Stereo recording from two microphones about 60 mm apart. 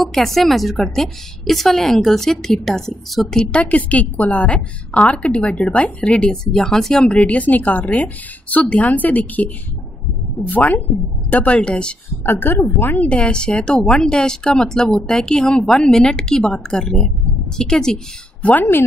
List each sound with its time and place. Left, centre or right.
0.0 s a woman's voice: centre
3.6 s a woman's voice: left
10.5 s a woman's voice: left
12.3 s a woman's voice: left
12.9 s speech: left
18.4 s a woman's voice: left